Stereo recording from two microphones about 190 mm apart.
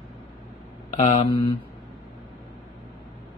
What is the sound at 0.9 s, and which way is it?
Speech, 30° left (ahead or behind).